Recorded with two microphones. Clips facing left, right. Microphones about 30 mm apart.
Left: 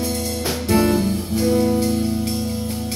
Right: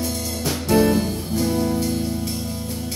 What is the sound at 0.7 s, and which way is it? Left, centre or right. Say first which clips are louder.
Music: even; centre.